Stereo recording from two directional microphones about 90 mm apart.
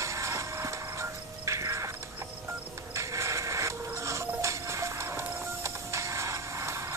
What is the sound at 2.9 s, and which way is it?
Music, 35° right (ahead or behind).